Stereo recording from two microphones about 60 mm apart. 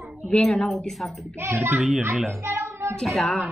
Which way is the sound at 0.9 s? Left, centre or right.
Centre.